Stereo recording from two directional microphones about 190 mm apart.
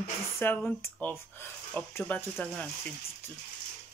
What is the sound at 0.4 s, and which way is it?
Speech, 10° left (ahead or behind).